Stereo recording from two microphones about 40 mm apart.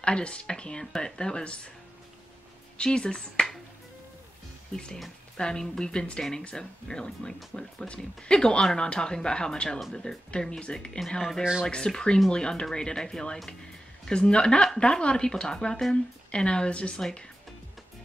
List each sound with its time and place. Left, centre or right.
0.0 s speech: left
2.8 s speech: left
5.4 s speech: centre
11.1 s speech: centre; by 17.0 s left